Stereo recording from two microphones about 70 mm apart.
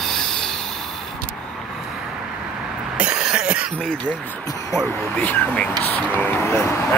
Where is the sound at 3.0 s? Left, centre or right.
Centre.